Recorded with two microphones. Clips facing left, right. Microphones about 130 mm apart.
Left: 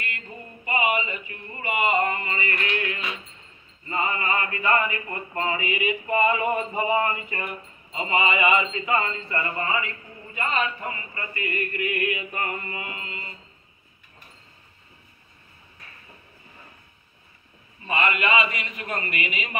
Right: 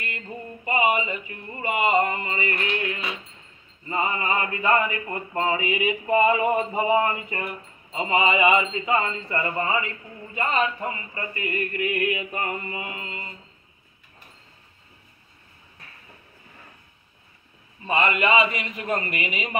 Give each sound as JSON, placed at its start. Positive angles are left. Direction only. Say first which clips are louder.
{"t": 0.7, "sound": "a sound", "louder": "right 2 dB", "side_deg": -30}
{"t": 1.5, "sound": "mantra", "louder": "right 2 dB", "side_deg": -30}
{"t": 17.8, "sound": "mantra", "louder": "right 2 dB", "side_deg": -30}